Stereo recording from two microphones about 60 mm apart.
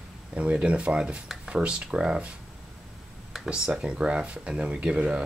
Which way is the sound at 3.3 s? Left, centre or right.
Centre.